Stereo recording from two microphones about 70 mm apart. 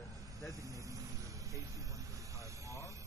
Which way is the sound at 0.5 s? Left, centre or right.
Right.